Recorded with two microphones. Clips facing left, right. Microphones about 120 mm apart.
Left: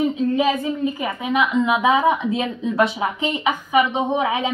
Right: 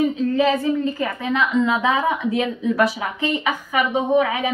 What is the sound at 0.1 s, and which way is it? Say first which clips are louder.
A woman's voice: right 1 dB; 15° left (ahead or behind).